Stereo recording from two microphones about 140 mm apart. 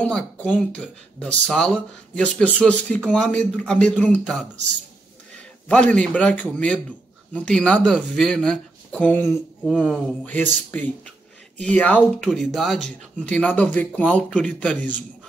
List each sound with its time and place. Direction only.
0.0 s speech: 10° left (ahead or behind)
5.7 s speech: 10° left (ahead or behind)
9.7 s speech: centre (ahead or behind)
12.3 s speech: centre (ahead or behind)